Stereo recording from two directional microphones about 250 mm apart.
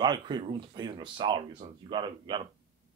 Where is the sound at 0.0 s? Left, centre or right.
Centre.